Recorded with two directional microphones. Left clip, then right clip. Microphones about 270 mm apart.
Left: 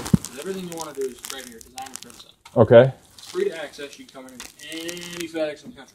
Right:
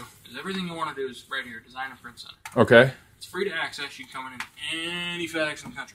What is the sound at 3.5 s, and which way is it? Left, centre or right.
Speech, right.